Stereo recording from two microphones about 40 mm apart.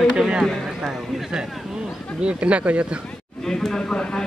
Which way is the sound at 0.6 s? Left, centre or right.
Centre.